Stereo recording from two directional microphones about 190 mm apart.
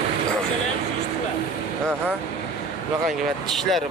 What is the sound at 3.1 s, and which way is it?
Speech, centre (ahead or behind).